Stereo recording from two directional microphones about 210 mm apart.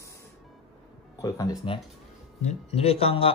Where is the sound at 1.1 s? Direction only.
15° left (ahead or behind).